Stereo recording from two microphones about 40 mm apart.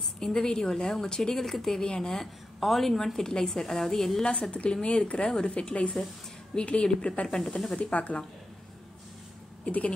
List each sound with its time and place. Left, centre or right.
0.2 s a woman's voice: centre
4.2 s a woman's voice: left
7.2 s a woman's voice: centre
7.9 s a woman's voice: left
9.7 s a woman's voice: left